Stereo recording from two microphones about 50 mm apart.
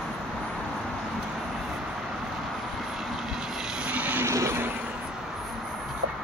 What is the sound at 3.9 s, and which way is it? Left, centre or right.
Vehicle, right.